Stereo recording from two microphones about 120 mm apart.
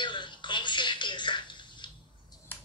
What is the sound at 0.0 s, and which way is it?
Television, 40° left (ahead or behind).